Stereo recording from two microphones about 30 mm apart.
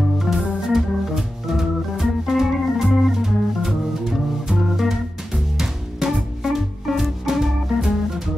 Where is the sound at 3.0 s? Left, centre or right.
Centre.